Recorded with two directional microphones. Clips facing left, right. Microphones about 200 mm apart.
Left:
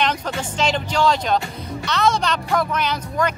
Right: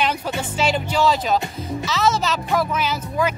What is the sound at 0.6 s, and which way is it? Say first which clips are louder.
Speech: even; 5° right (ahead or behind).